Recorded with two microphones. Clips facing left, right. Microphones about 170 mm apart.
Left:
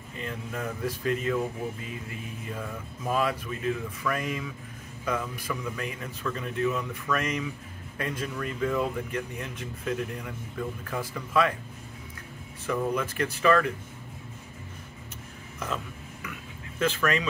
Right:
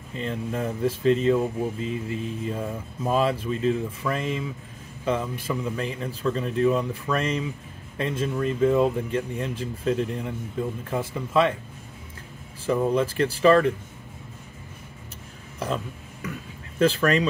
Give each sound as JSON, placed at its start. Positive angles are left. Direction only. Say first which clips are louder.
{"t": 0.2, "sound": "speech", "louder": "right 6 dB", "side_deg": -30}
{"t": 12.6, "sound": "speech", "louder": "right 6 dB", "side_deg": -30}
{"t": 15.6, "sound": "dishes", "louder": "right 5 dB", "side_deg": -35}